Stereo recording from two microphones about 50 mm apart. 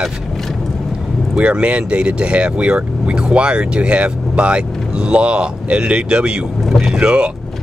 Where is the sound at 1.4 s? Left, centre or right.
Right.